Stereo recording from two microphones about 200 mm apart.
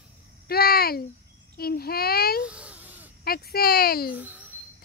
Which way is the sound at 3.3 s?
50° left (ahead or behind).